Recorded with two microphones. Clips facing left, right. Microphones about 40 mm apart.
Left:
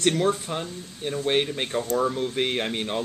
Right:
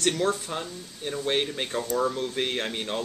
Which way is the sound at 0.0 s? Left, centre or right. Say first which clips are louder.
Left 3 dB; centre.